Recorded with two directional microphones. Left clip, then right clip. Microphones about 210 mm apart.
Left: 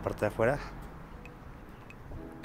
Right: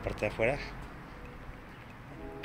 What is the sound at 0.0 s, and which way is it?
Speech, 35° left (ahead or behind).